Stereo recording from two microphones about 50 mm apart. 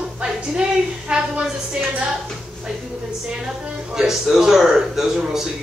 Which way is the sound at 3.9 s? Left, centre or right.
Centre.